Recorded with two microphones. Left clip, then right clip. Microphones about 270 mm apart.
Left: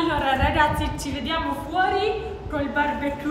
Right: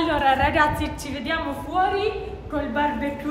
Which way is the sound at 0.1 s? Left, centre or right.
Right.